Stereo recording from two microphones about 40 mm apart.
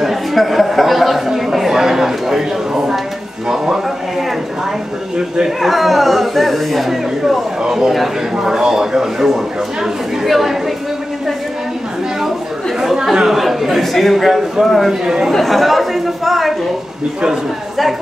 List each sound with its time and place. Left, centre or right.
0.0 s a sound: centre
3.4 s music: centre
5.6 s a man's voice: centre
7.6 s a man's voice: centre
12.8 s chatter: centre
13.1 s a man's voice: centre
14.9 s a man's voice: centre
15.3 s speech: centre